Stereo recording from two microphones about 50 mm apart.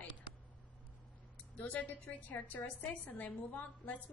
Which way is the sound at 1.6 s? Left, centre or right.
Left.